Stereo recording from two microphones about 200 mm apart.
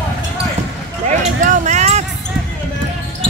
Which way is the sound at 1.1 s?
35° right (ahead or behind).